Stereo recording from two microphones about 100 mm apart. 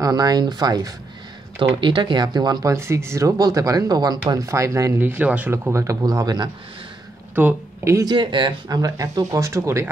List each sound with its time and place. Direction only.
0.0 s speech: 40° right (ahead or behind)
1.8 s speech: 55° right (ahead or behind)
2.7 s speech: 25° right (ahead or behind)
4.5 s speech: 30° right (ahead or behind)
4.9 s speech: 20° right (ahead or behind); by 6.5 s 40° right (ahead or behind)
7.4 s speech: 20° right (ahead or behind)
7.8 s speech: 30° right (ahead or behind)
8.1 s speech: 55° right (ahead or behind); by 9.8 s 30° right (ahead or behind)